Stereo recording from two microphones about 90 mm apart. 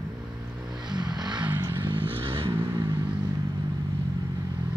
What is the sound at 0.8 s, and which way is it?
Vehicle, 55° right (ahead or behind).